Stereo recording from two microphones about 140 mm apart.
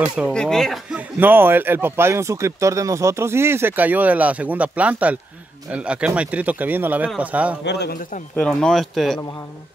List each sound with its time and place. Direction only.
0.0 s speech: 10° right (ahead or behind)
0.3 s speech: 5° left (ahead or behind)
0.9 s speech: 15° right (ahead or behind)
7.9 s speech: 85° left
8.4 s speech: 5° left (ahead or behind)